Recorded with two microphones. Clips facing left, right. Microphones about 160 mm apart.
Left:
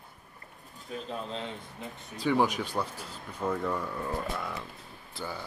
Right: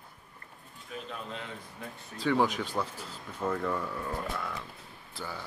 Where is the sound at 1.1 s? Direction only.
30° left (ahead or behind).